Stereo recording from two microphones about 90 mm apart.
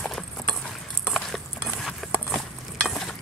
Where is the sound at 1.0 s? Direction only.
Centre (ahead or behind).